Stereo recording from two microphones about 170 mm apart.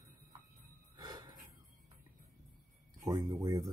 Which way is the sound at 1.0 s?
25° right (ahead or behind).